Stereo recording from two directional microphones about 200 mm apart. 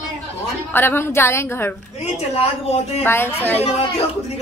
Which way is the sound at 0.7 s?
10° left (ahead or behind).